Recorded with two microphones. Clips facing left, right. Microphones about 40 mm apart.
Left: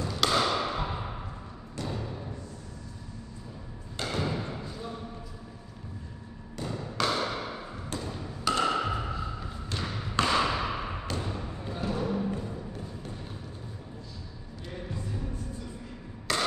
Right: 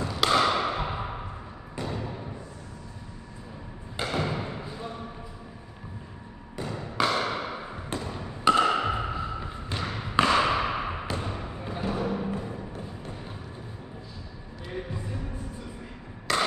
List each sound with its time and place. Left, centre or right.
0.1 s thump: centre
1.8 s music: centre
3.9 s thump: centre
6.5 s a sound: centre
14.7 s music: right
16.3 s chop: centre